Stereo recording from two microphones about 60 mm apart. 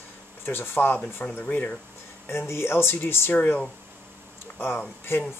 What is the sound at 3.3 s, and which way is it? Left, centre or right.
Speech, left.